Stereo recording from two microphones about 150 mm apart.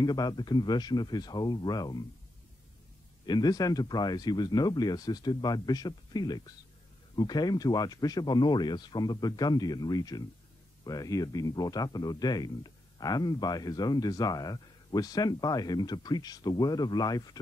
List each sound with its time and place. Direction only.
0.0 s speech: 25° left (ahead or behind)
3.3 s speech: 25° left (ahead or behind)